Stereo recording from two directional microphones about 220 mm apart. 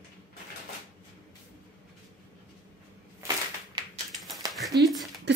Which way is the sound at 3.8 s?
20° right (ahead or behind).